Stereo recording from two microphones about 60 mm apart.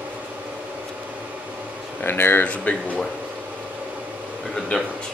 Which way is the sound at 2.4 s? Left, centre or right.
Left.